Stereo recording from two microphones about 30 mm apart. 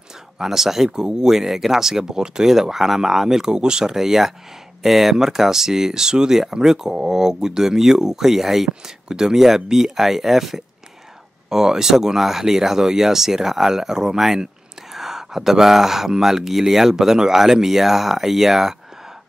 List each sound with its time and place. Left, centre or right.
0.4 s speech: centre
0.9 s speech: right
1.3 s speech: centre
8.8 s speech: centre
11.4 s speech: centre